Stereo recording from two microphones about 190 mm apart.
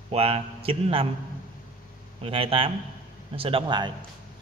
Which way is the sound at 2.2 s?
30° right (ahead or behind).